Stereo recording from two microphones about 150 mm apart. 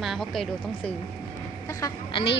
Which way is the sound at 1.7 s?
20° left (ahead or behind).